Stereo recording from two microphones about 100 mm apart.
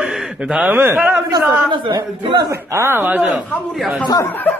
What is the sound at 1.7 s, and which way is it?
Speech, 50° right (ahead or behind).